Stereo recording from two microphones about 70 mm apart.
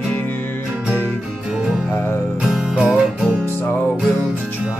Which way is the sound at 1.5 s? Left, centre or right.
Centre.